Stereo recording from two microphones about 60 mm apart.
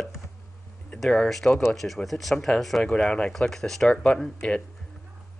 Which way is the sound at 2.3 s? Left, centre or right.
Centre.